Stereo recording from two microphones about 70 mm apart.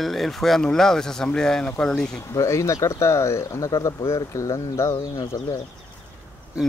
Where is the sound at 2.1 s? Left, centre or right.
Left.